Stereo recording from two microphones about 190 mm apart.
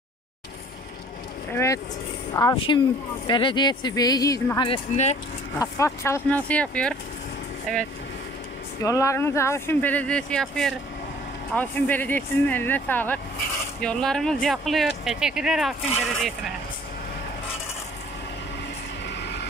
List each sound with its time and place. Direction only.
1.5 s speech: 15° left (ahead or behind)
4.6 s speech: 35° left (ahead or behind)
5.6 s speech: 15° left (ahead or behind)
8.8 s speech: 15° left (ahead or behind); by 15.7 s centre (ahead or behind)
19.0 s vehicle: 65° left (ahead or behind)